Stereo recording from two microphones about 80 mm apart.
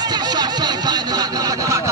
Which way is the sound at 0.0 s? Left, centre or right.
Right.